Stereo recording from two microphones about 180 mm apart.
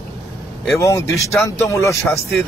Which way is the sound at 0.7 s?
15° left (ahead or behind).